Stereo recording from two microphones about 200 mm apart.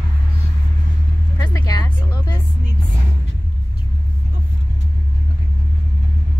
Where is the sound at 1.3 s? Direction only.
20° left (ahead or behind).